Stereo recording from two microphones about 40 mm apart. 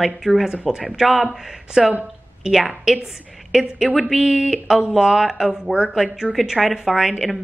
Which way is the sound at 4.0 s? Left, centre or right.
Centre.